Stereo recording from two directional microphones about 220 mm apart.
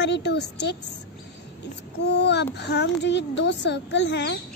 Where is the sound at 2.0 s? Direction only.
50° left (ahead or behind).